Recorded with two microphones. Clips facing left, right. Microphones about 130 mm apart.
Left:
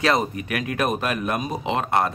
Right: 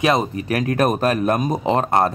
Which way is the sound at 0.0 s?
25° right (ahead or behind).